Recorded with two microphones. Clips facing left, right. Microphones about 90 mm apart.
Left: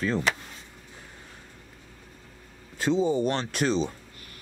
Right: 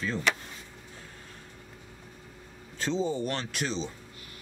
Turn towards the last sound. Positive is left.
turn(degrees=50)  # may be behind; listen again after turning